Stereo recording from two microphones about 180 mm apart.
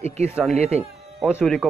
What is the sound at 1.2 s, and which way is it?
Speech, 5° right (ahead or behind).